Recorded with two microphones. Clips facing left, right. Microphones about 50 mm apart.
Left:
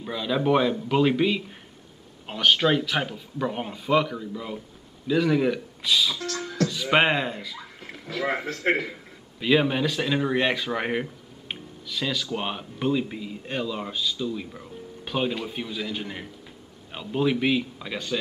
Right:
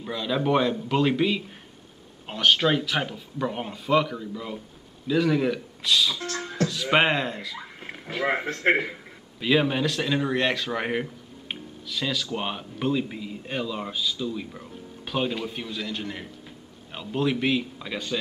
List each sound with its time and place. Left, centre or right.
0.0 s speech: centre
6.2 s music: right
6.7 s speech: centre
7.9 s speech: right
9.4 s speech: centre